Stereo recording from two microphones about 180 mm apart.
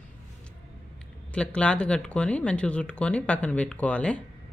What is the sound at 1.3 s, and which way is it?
Speech, 5° left (ahead or behind).